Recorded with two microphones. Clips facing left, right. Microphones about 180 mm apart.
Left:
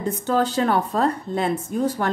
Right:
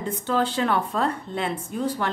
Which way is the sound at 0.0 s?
40° left (ahead or behind).